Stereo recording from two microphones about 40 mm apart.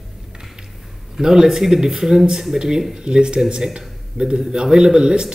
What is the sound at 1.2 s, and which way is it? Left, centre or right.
A man's voice, centre.